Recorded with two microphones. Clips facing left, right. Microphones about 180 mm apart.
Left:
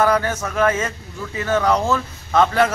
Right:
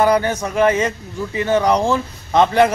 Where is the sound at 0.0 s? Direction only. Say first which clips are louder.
Right 3 dB; 15° right (ahead or behind).